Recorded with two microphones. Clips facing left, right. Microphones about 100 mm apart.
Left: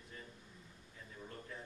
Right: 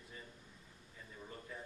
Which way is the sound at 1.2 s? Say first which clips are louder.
Even; 5° right (ahead or behind).